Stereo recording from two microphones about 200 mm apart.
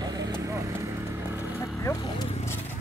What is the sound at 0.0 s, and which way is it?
Vehicle, 20° right (ahead or behind).